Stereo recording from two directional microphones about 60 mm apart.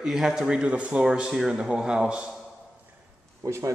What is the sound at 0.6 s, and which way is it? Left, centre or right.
A man's voice, centre.